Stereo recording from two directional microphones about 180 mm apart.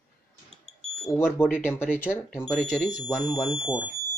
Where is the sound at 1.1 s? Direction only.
10° left (ahead or behind).